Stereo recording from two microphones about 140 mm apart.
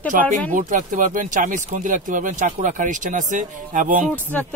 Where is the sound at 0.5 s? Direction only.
70° right (ahead or behind).